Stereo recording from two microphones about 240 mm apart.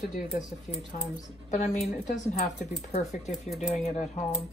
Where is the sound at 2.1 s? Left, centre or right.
Left.